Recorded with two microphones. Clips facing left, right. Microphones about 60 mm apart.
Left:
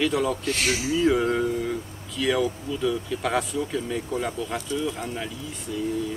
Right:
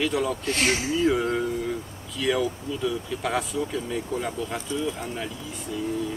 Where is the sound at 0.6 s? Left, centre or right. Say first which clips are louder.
Right 2 dB; right.